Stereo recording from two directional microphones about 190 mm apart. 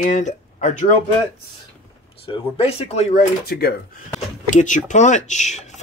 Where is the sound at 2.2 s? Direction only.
30° left (ahead or behind); by 3.7 s 55° left (ahead or behind).